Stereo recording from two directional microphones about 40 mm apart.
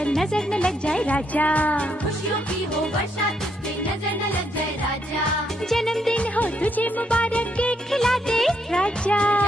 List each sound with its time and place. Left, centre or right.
0.3 s speech: left
1.0 s music: left
5.7 s music: centre
6.1 s music: left
7.9 s music: centre
8.7 s music: left